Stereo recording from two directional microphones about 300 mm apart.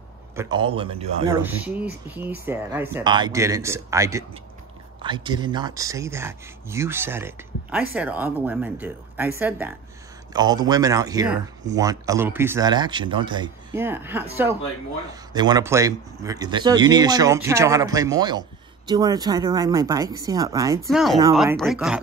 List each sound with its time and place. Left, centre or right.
0.4 s speech: centre
1.4 s speech: centre
21.4 s speech: centre